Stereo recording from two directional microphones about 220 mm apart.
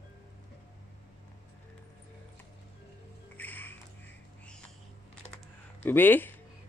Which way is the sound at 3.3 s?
10° left (ahead or behind).